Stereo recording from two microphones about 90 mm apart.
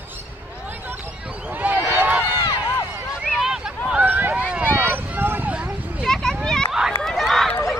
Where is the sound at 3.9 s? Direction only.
20° right (ahead or behind).